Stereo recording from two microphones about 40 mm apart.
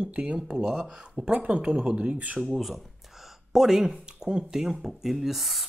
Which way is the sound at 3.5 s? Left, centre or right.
Centre.